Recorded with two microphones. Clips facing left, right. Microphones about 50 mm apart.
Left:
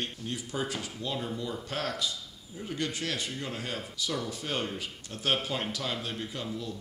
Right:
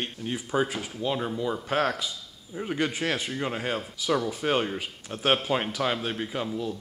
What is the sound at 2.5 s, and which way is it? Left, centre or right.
Speech, right.